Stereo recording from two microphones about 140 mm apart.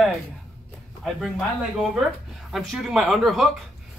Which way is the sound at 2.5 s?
5° right (ahead or behind).